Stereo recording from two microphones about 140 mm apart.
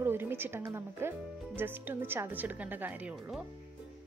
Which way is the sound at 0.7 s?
15° right (ahead or behind).